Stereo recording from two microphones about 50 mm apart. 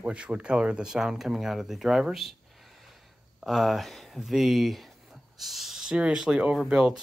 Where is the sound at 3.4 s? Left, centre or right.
Centre.